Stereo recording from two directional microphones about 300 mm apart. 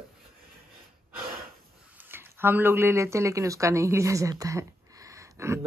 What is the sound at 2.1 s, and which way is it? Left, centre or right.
Speech, centre.